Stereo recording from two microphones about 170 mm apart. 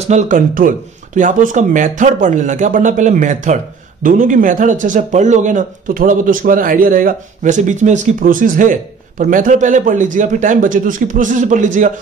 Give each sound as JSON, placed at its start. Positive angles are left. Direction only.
{"t": 0.0, "sound": "speech", "side_deg": -45}